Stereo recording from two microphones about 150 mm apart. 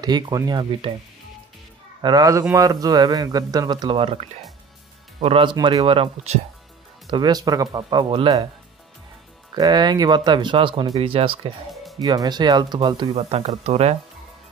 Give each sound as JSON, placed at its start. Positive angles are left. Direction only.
{"t": 0.0, "sound": "speech", "side_deg": -25}
{"t": 2.0, "sound": "speech", "side_deg": -30}
{"t": 7.1, "sound": "speech", "side_deg": -30}
{"t": 9.6, "sound": "speech", "side_deg": -30}
{"t": 11.7, "sound": "music", "side_deg": 0}
{"t": 12.0, "sound": "speech", "side_deg": -25}
{"t": 13.1, "sound": "speech", "side_deg": -45}